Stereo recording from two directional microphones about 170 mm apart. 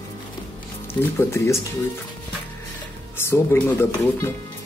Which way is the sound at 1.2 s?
15° left (ahead or behind).